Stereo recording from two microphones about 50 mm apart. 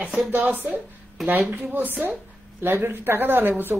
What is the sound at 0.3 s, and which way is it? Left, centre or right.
A woman's voice, right.